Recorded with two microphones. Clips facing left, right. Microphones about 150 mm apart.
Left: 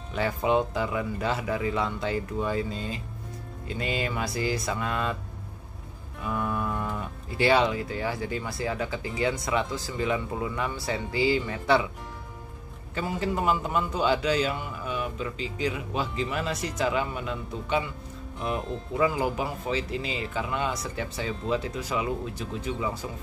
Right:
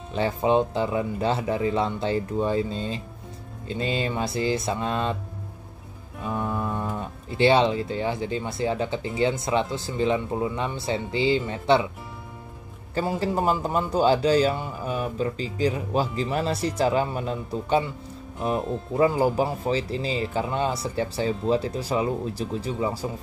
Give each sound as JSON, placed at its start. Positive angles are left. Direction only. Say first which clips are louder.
{"t": 0.1, "sound": "speech", "louder": "right 3 dB", "side_deg": -25}
{"t": 6.2, "sound": "music", "louder": "right 1 dB", "side_deg": -25}
{"t": 7.0, "sound": "speech", "louder": "right 5 dB", "side_deg": -25}
{"t": 12.9, "sound": "a man's voice", "louder": "right 4 dB", "side_deg": -35}